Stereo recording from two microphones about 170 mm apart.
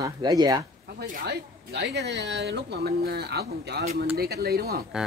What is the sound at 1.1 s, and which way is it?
Speech, 70° right (ahead or behind).